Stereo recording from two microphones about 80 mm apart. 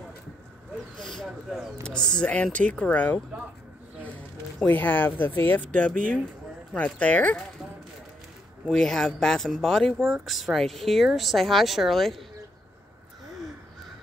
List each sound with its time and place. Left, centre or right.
1.2 s speech: centre
1.9 s speech: centre
4.6 s speech: left
8.7 s speech: centre